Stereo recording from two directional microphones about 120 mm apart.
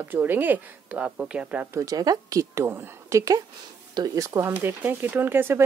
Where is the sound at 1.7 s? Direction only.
25° right (ahead or behind).